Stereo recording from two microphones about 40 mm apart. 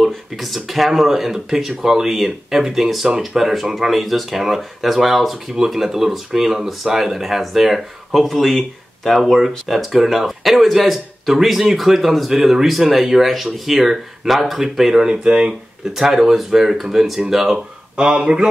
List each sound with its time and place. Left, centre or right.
0.0 s speech: centre
15.0 s speech: right
15.9 s speech: centre
17.5 s speech: centre